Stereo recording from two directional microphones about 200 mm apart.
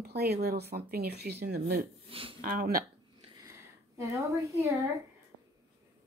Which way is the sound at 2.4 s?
45° right (ahead or behind).